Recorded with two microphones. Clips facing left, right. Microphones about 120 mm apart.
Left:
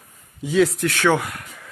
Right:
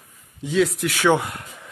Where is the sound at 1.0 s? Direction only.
25° right (ahead or behind).